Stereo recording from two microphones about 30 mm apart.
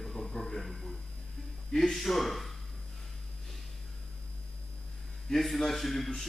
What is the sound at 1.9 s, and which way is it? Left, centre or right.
Speech, centre.